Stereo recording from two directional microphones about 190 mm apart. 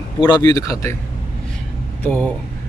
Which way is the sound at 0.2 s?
20° left (ahead or behind).